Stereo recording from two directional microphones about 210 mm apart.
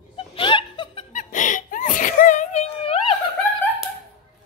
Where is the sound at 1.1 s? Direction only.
35° left (ahead or behind).